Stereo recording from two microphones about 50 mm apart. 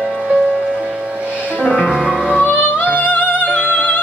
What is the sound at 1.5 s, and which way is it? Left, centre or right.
Music, left.